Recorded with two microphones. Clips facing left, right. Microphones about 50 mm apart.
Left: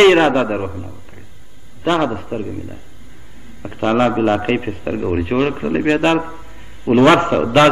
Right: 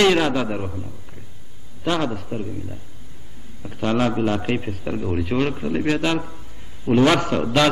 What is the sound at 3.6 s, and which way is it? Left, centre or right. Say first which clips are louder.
A man's voice: left 6 dB; left.